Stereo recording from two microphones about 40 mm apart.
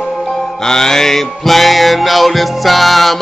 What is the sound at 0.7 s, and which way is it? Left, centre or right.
Music, centre.